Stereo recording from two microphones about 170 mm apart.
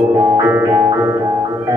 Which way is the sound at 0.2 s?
20° right (ahead or behind).